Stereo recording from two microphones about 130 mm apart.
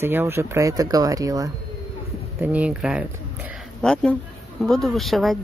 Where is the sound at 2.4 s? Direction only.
10° right (ahead or behind).